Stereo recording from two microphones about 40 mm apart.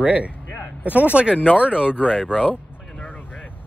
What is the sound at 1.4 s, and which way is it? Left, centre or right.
Speech, right.